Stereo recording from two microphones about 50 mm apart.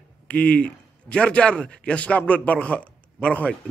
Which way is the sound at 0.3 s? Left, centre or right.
Left.